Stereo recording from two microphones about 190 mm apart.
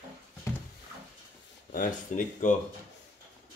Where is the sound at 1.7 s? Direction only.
45° left (ahead or behind).